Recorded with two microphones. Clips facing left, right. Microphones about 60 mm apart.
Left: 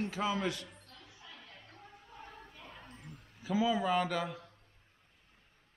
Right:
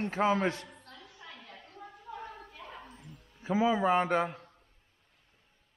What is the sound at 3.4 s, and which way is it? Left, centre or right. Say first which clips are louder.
A man's voice: right 4 dB; right.